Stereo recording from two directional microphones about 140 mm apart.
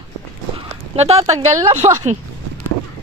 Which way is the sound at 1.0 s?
45° right (ahead or behind).